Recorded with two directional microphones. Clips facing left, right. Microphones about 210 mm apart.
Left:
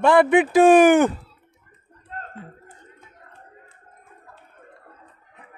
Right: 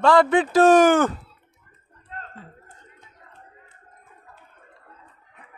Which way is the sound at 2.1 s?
45° left (ahead or behind).